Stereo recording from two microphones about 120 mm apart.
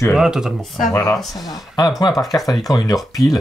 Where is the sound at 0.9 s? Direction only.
30° left (ahead or behind).